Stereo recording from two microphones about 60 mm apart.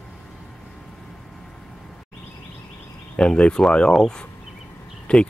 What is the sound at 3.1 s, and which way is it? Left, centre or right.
Speech, centre.